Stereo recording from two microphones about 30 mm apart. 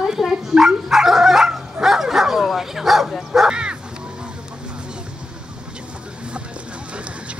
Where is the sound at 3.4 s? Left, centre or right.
Right.